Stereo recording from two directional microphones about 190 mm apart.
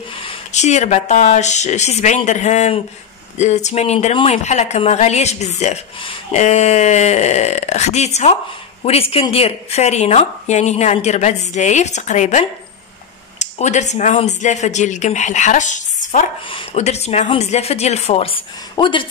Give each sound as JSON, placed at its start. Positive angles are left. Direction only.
{"t": 0.1, "sound": "speech", "side_deg": 25}